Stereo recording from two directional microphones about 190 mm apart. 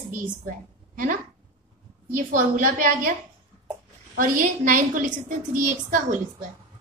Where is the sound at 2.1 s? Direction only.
45° right (ahead or behind).